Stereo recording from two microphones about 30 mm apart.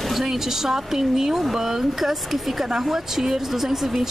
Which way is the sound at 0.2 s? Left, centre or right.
Centre.